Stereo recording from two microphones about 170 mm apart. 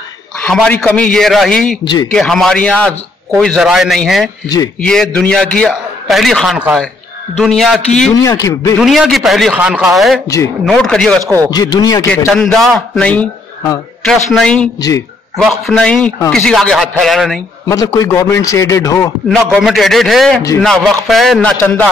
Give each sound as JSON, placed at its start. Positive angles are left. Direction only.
{"t": 0.5, "sound": "a man's voice", "side_deg": 5}
{"t": 1.9, "sound": "a man's voice", "side_deg": 20}
{"t": 2.1, "sound": "a man's voice", "side_deg": 5}
{"t": 8.1, "sound": "a man's voice", "side_deg": 20}
{"t": 8.7, "sound": "a man's voice", "side_deg": 0}
{"t": 10.2, "sound": "a man's voice", "side_deg": 20}
{"t": 10.6, "sound": "a man's voice", "side_deg": 0}
{"t": 11.2, "sound": "a man's voice", "side_deg": -15}
{"t": 11.5, "sound": "a man's voice", "side_deg": 25}
{"t": 12.3, "sound": "a man's voice", "side_deg": 0}
{"t": 14.8, "sound": "a man's voice", "side_deg": 20}
{"t": 15.3, "sound": "a man's voice", "side_deg": 0}
{"t": 17.6, "sound": "a man's voice", "side_deg": 20}
{"t": 19.2, "sound": "a man's voice", "side_deg": 0}